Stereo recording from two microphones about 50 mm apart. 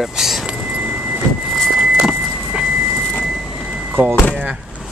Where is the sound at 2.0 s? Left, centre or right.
Centre.